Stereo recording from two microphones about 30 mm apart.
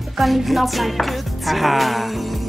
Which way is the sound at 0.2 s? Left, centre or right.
Centre.